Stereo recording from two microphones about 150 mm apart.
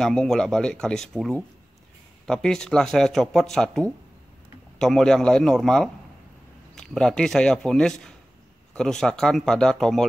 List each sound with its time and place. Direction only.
0.0 s speech: 5° left (ahead or behind)